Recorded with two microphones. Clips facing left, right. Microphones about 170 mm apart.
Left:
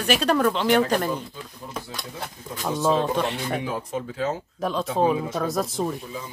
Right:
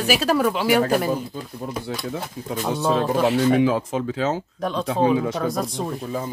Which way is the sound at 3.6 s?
90° right.